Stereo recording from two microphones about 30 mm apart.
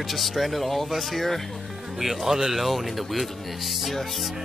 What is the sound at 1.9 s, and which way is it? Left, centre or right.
Speech, centre.